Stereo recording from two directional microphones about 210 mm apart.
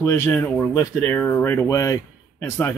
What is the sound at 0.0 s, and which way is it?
Speech, 15° left (ahead or behind).